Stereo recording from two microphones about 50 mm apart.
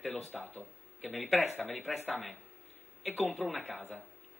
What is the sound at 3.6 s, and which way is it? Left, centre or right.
Speech, right.